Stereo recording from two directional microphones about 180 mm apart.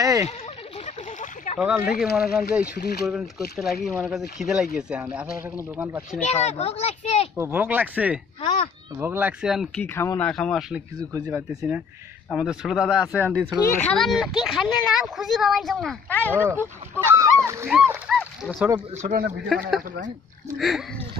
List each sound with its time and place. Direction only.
0.0 s a sound: 15° right (ahead or behind)
0.8 s a sound: 45° left (ahead or behind)
1.6 s speech: 5° right (ahead or behind)
6.2 s a child's voice: 35° left (ahead or behind)
7.3 s speech: 10° right (ahead or behind)
9.9 s speech: 10° left (ahead or behind); by 13.5 s 10° right (ahead or behind)
13.7 s speech: 5° left (ahead or behind)
16.3 s speech: 10° right (ahead or behind)
18.1 s dog: centre (ahead or behind)
19.0 s speech: 50° right (ahead or behind)
20.5 s speech: centre (ahead or behind)